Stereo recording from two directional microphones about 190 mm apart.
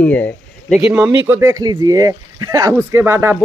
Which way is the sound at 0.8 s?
10° right (ahead or behind).